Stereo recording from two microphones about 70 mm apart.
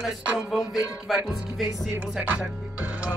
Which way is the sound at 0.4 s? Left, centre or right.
Centre.